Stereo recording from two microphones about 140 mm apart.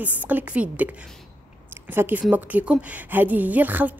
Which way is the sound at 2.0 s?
15° right (ahead or behind).